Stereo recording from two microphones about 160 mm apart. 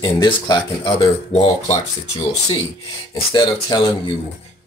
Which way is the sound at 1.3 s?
45° left (ahead or behind).